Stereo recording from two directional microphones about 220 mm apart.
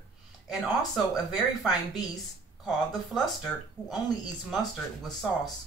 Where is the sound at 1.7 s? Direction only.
15° left (ahead or behind).